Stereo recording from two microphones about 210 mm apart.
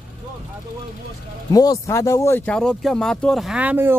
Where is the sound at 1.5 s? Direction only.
15° left (ahead or behind).